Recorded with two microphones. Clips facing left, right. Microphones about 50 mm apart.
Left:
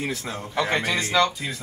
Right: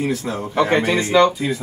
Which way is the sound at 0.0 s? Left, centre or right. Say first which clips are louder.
Right 7 dB; centre.